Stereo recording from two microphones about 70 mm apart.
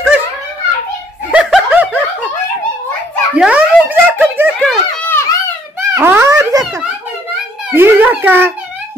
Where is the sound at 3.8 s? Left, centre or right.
Right.